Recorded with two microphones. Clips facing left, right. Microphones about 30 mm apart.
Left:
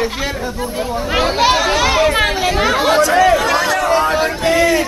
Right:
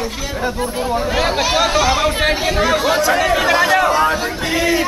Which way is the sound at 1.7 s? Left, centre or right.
Centre.